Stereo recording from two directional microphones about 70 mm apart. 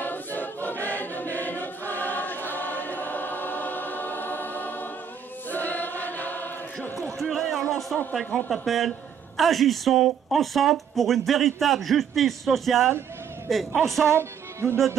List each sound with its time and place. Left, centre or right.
0.0 s choir: left
7.0 s a sound: centre
8.1 s speech: centre
8.5 s speech: centre
14.0 s speech: right